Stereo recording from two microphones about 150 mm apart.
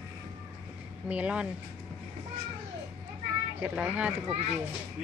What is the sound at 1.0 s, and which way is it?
Speech, 10° right (ahead or behind).